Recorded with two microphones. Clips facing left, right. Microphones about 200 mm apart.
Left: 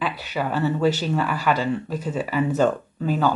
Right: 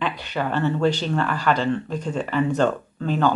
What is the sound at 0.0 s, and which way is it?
Speech, 5° left (ahead or behind).